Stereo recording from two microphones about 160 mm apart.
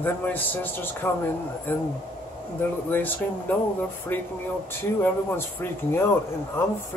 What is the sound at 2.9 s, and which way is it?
Speech, 10° left (ahead or behind).